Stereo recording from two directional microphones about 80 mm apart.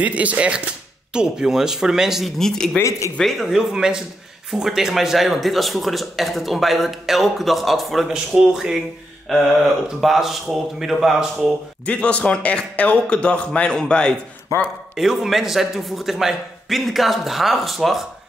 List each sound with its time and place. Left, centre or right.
0.0 s speech: centre
2.3 s speech: centre
11.8 s speech: centre
15.0 s speech: centre